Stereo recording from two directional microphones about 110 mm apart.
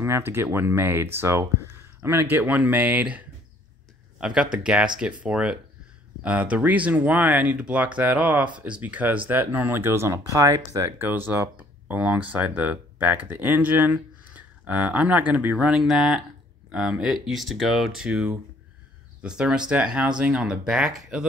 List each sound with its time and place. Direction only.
0.0 s speech: 20° right (ahead or behind); by 21.3 s 5° right (ahead or behind)